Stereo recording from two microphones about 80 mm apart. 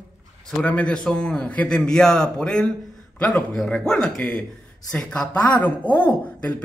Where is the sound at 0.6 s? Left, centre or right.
Centre.